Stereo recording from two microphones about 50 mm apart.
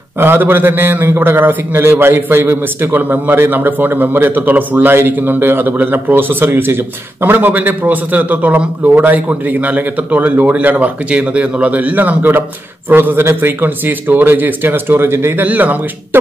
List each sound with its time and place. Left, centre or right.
0.2 s a man's voice: right
15.3 s a man's voice: right